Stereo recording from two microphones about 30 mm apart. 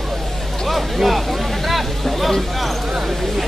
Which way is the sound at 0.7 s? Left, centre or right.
Centre.